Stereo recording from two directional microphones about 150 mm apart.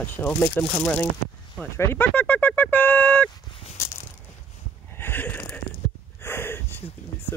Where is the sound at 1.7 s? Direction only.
15° left (ahead or behind).